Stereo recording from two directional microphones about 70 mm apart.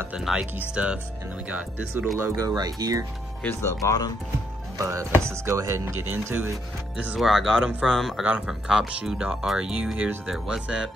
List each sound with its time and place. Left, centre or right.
0.3 s speech: centre
0.8 s speech: centre
2.1 s speech: right
2.5 s speech: right
3.6 s speech: left
4.7 s speech: right
6.2 s speech: right
7.2 s speech: centre
10.3 s speech: centre